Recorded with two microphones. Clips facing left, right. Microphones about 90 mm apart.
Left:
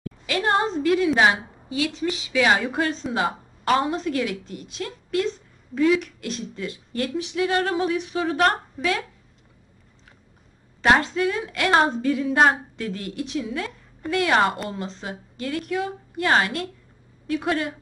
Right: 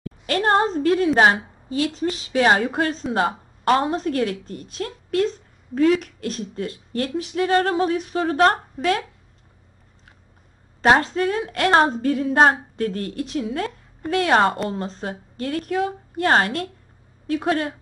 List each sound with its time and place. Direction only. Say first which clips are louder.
0.3 s a woman's voice: right 3 dB; 40° right (ahead or behind)
10.8 s a woman's voice: right 2 dB; 40° right (ahead or behind)